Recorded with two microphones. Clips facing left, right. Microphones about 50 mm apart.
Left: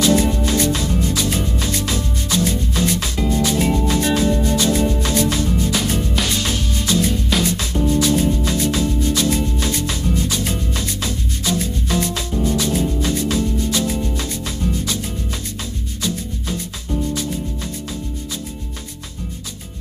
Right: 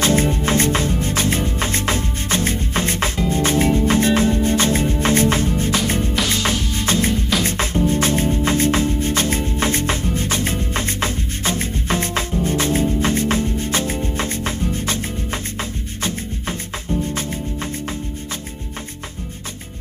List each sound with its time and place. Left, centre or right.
0.0 s music: right